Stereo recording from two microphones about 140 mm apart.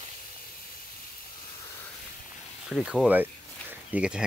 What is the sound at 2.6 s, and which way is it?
Speech, centre (ahead or behind).